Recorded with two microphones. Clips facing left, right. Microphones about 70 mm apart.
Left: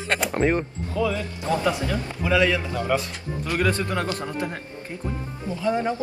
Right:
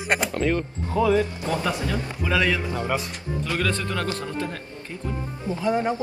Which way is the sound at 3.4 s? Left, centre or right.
Left.